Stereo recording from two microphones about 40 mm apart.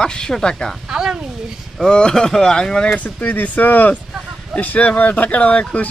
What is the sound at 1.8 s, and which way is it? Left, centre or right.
Speech, centre.